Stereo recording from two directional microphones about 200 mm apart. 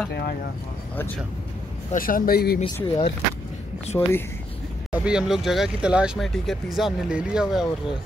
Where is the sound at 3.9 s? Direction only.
10° left (ahead or behind).